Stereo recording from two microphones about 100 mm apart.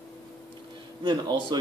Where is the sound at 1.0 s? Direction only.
50° right (ahead or behind).